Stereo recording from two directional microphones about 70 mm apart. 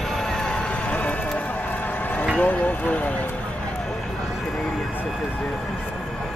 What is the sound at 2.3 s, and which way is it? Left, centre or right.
Speech, left.